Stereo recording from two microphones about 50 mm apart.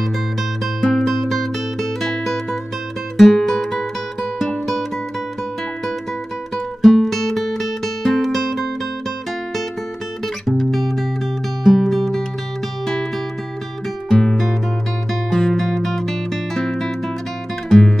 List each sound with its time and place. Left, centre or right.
0.7 s music: centre
6.5 s music: centre
10.2 s music: centre
14.0 s guitar: centre
15.2 s music: centre